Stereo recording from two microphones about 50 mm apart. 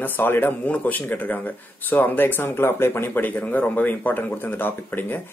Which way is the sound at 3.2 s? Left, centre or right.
Left.